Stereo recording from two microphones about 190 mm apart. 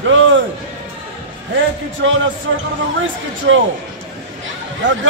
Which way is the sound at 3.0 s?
80° right.